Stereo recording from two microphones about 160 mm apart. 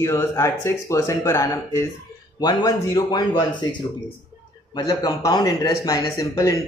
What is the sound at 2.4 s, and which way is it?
Speech, 25° left (ahead or behind).